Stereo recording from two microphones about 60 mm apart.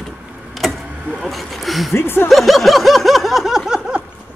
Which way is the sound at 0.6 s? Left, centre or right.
Centre.